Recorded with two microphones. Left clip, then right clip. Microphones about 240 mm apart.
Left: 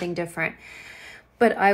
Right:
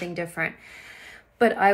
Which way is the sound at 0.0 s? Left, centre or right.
Centre.